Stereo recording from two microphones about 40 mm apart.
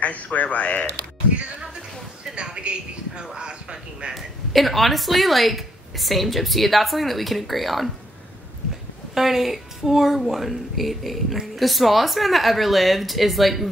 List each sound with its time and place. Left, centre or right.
0.0 s speech: left
2.3 s a woman's voice: right
4.1 s speech: centre
9.1 s a woman's voice: centre